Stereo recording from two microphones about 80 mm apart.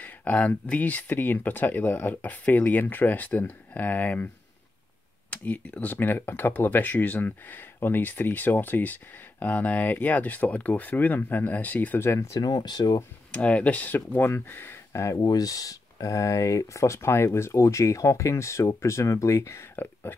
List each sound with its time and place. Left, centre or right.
0.0 s speech: centre
5.3 s speech: centre
12.0 s speech: left
12.4 s speech: left
13.3 s speech: centre; by 15.2 s left
15.2 s speech: left